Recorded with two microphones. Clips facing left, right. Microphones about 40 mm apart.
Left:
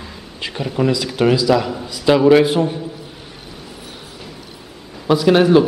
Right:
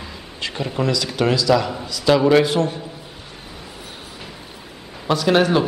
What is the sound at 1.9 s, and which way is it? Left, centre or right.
Speech, centre.